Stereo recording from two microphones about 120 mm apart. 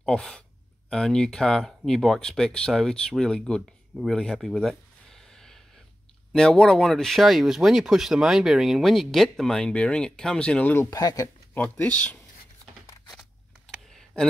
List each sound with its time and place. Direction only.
0.0 s speech: 5° left (ahead or behind)
10.9 s speech: 30° left (ahead or behind)
11.8 s speech: 10° left (ahead or behind)